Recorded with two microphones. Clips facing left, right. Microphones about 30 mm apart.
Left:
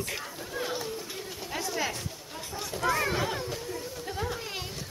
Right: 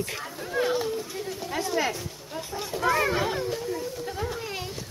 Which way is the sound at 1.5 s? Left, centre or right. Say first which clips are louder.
Right 5 dB; right.